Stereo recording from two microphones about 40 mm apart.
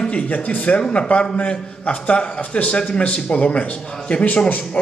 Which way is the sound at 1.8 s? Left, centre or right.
Left.